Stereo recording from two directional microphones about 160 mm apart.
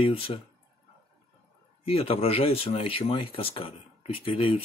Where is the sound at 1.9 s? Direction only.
35° left (ahead or behind).